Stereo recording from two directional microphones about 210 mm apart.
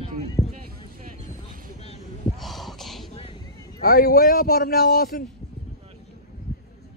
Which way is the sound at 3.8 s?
45° left (ahead or behind).